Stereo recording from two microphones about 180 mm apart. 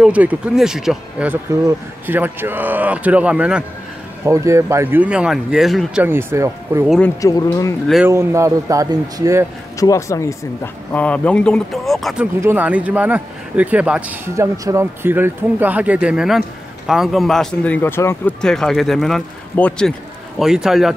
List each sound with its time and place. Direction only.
0.0 s speech: 10° right (ahead or behind)
6.0 s speech: 15° right (ahead or behind)
7.0 s a man's voice: 20° left (ahead or behind)
8.1 s speech: 15° right (ahead or behind)
9.8 s a man's voice: 15° left (ahead or behind); by 12.3 s centre (ahead or behind)
12.4 s a man's voice: 10° right (ahead or behind)